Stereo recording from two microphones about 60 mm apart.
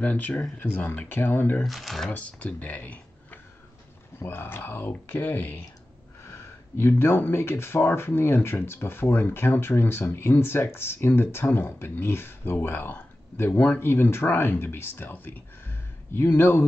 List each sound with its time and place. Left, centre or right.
0.0 s speech: left
1.6 s speech: centre
2.0 s speech: left
4.2 s speech: left
6.2 s a sound: left
6.9 s speech: left